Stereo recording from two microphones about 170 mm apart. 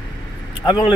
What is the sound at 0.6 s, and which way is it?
Speech, 25° left (ahead or behind).